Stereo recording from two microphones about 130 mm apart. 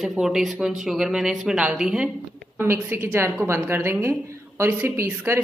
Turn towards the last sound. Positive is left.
turn(degrees=-20)  # may be behind; listen again after turning